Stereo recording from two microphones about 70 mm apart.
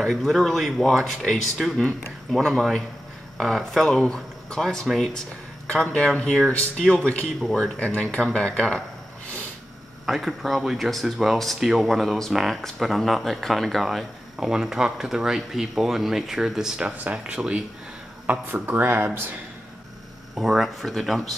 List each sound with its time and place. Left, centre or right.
0.0 s speech: centre
3.3 s speech: centre
7.9 s speech: centre
10.0 s speech: centre
16.8 s speech: centre
18.2 s speech: right
20.3 s speech: centre